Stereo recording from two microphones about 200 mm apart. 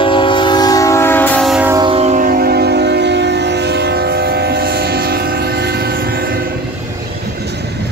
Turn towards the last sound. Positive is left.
turn(degrees=-50)  # may be behind; listen again after turning